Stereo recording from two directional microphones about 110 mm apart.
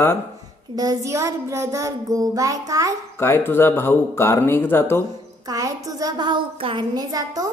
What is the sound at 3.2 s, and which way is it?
A man's voice, 20° left (ahead or behind).